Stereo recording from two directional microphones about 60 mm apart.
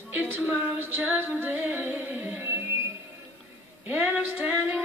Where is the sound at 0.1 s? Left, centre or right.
Right.